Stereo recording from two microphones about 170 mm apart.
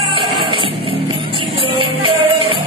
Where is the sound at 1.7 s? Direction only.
30° right (ahead or behind).